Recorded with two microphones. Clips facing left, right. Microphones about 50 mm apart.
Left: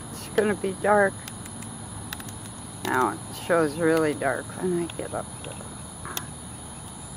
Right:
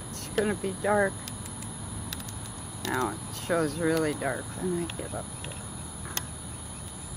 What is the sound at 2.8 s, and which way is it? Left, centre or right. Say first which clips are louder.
Speech: left 6 dB; centre.